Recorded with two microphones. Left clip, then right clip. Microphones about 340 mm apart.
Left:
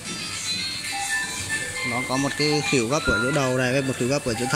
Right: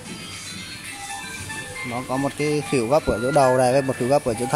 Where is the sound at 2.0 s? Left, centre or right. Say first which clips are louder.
Right 2 dB; centre.